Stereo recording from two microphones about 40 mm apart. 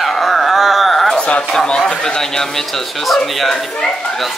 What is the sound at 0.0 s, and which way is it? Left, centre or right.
Howl, centre.